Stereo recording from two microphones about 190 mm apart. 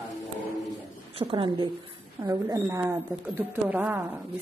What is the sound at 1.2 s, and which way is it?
A woman's voice, 25° right (ahead or behind).